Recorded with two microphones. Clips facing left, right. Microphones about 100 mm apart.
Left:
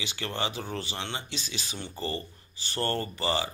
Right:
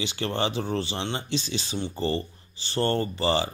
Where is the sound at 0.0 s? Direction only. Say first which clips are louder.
Right 5 dB; 30° right (ahead or behind).